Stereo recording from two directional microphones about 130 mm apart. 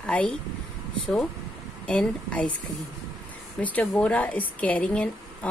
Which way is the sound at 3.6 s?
10° left (ahead or behind).